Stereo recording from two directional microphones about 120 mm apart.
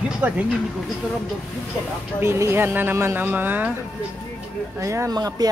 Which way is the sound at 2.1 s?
20° right (ahead or behind).